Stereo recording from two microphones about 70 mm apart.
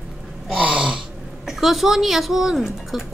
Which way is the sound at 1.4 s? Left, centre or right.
Centre.